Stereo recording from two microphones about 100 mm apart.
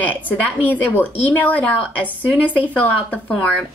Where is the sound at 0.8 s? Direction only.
20° left (ahead or behind).